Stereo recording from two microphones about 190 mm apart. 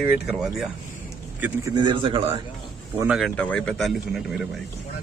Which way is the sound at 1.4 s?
15° right (ahead or behind).